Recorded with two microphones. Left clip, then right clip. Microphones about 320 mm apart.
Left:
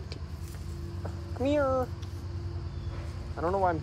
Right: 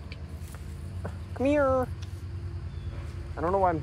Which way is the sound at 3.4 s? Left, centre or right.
Right.